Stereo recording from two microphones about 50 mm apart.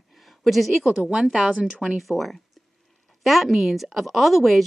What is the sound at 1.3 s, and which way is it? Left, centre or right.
Speech, centre.